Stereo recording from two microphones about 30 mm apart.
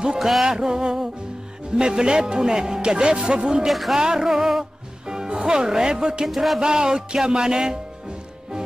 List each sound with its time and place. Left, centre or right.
0.5 s speech: right
3.6 s music: centre
3.9 s speech: centre
4.3 s music: centre
5.0 s speech: right
6.2 s music: centre
6.6 s speech: right